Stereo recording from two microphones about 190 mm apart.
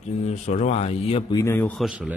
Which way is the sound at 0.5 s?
35° left (ahead or behind).